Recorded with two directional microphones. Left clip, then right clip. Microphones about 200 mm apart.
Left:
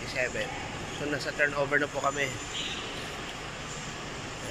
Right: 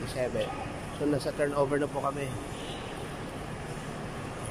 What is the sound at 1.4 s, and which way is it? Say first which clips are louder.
Speech: left 4 dB; 15° right (ahead or behind).